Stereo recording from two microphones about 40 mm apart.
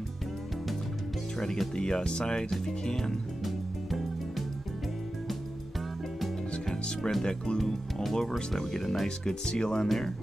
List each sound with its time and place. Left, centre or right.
1.4 s speech: centre
3.4 s music: centre
6.6 s speech: centre
9.0 s speech: centre